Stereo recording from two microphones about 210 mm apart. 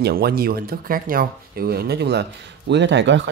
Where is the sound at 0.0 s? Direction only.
45° right (ahead or behind).